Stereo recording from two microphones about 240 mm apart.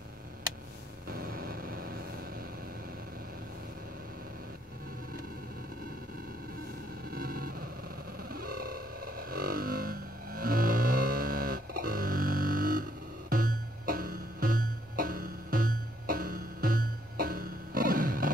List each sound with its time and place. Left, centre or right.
1.1 s vehicle: right
7.1 s a sound: right
8.3 s music: right